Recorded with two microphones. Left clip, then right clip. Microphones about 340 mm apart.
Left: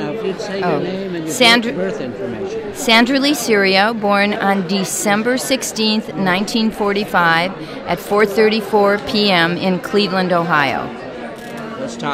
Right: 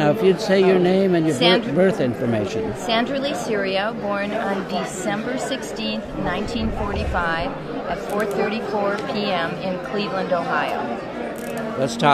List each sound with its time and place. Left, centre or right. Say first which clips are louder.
0.0 s speech: right 4 dB; right
1.4 s a woman's voice: left 8 dB; left
1.8 s speech: right 3 dB; right
2.9 s a woman's voice: left 9 dB; left